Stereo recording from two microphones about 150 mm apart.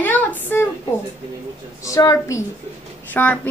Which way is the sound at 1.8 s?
20° left (ahead or behind).